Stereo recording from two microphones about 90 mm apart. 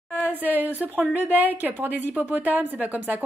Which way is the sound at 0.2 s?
20° right (ahead or behind).